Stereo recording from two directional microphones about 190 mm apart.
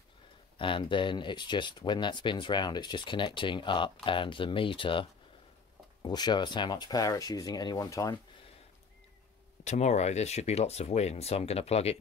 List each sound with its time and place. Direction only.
0.6 s speech: 25° left (ahead or behind)
6.0 s speech: 20° left (ahead or behind)
9.7 s speech: 35° left (ahead or behind)